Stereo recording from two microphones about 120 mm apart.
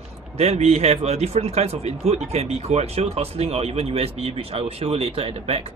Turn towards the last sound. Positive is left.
turn(degrees=-55)  # may be behind; listen again after turning